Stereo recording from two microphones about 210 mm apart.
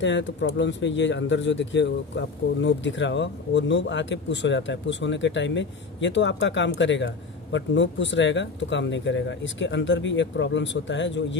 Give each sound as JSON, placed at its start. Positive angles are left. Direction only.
{"t": 0.0, "sound": "speech", "side_deg": 60}